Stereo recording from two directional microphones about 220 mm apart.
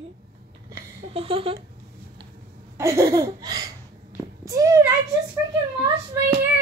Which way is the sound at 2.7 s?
15° right (ahead or behind).